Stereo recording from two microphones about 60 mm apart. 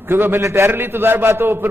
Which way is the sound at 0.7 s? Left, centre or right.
Right.